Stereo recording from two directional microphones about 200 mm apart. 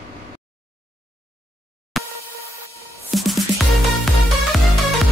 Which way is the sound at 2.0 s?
Centre (ahead or behind).